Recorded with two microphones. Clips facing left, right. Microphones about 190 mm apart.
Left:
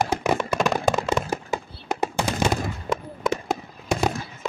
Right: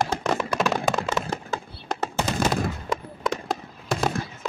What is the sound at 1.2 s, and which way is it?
Fireworks, 10° left (ahead or behind).